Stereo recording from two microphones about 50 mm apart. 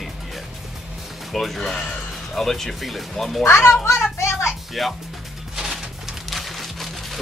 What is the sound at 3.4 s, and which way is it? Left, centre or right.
Speech, left.